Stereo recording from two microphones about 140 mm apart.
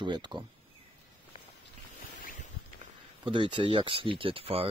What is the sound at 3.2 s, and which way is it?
Speech, 35° right (ahead or behind).